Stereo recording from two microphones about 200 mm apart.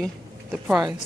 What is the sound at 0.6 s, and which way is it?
Speech, 15° right (ahead or behind).